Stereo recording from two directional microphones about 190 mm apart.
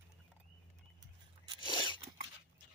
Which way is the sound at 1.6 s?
25° left (ahead or behind).